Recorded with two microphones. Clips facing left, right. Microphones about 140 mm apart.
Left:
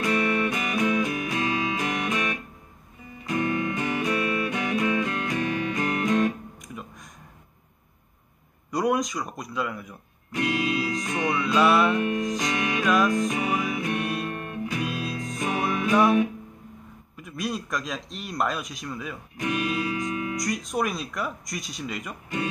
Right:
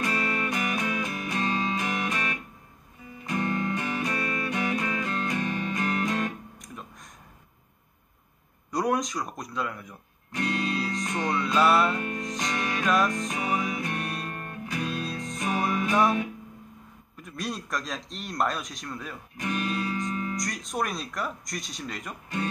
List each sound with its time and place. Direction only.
0.7 s music: 15° left (ahead or behind)
3.3 s music: 15° left (ahead or behind)
6.6 s a sound: centre (ahead or behind)
8.7 s speech: centre (ahead or behind)
11.1 s music: 15° left (ahead or behind)
11.4 s speech: centre (ahead or behind)
12.5 s music: 10° left (ahead or behind)
12.8 s speech: centre (ahead or behind)
13.3 s music: 10° left (ahead or behind)
17.2 s a man's voice: centre (ahead or behind)